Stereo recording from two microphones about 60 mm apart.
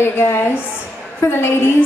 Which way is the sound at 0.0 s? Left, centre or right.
Left.